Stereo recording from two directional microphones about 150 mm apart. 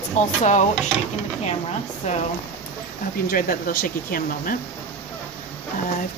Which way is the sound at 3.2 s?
75° left (ahead or behind).